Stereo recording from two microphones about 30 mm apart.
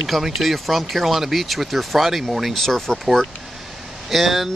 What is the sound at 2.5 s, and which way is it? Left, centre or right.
Speech, centre.